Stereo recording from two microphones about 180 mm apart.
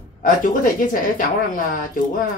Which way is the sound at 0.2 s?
45° left (ahead or behind).